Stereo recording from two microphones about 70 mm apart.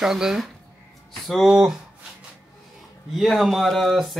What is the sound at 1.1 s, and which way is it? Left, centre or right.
Speech, centre.